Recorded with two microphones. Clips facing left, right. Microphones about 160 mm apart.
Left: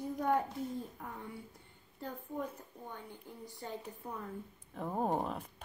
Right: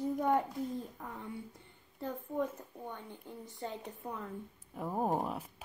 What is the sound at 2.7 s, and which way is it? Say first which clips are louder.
Speech: right 4 dB; 60° right (ahead or behind).